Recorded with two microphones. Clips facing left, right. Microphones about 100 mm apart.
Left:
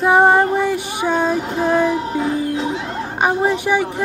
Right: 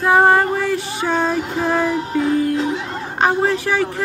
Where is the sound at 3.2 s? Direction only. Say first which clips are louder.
Even; 15° left (ahead or behind).